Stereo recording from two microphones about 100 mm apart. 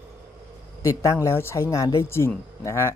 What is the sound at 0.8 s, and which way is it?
Speech, 30° left (ahead or behind).